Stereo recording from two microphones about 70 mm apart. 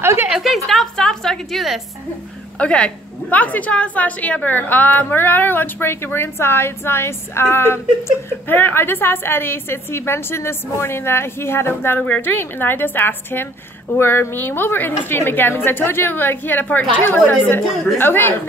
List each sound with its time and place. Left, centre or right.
0.0 s a sound: right
0.3 s a woman's voice: centre
0.7 s a woman's voice: centre
2.6 s a woman's voice: centre